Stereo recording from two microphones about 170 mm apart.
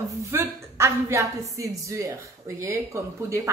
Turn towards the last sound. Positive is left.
turn(degrees=-15)  # may be behind; listen again after turning